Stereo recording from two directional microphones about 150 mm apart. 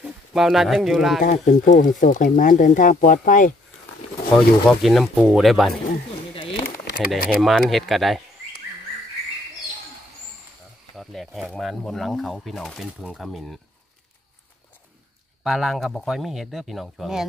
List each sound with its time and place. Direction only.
0.0 s speech: centre (ahead or behind)
1.2 s speech: 60° left (ahead or behind)
4.4 s speech: centre (ahead or behind)
6.5 s a sound: 70° left (ahead or behind)
7.1 s speech: centre (ahead or behind)
11.0 s speech: centre (ahead or behind)
15.4 s speech: centre (ahead or behind)